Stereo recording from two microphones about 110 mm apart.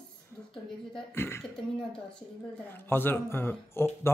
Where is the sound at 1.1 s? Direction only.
20° left (ahead or behind).